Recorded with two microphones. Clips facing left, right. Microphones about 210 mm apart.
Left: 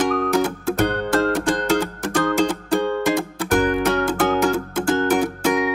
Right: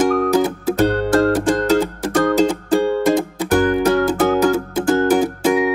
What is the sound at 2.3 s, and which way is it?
Music, 40° right (ahead or behind).